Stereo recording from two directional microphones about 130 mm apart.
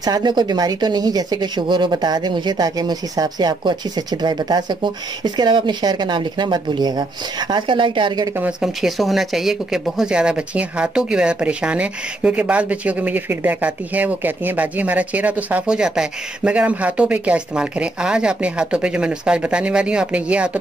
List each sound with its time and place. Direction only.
0.0 s speech: 30° right (ahead or behind)
8.4 s speech: 5° right (ahead or behind)